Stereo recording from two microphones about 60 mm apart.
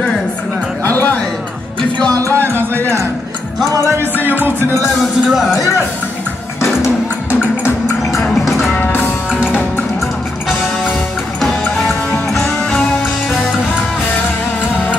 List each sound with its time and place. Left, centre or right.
0.8 s a sound: left
2.0 s music: left
2.2 s music: right
3.8 s music: right
5.3 s speech: centre
8.3 s music: centre
9.5 s music: left
11.4 s music: centre